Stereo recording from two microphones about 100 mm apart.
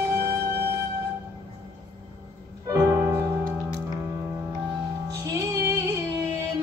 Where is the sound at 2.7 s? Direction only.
30° right (ahead or behind).